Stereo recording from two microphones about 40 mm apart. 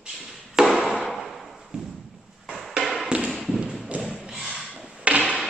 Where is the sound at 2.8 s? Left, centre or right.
Centre.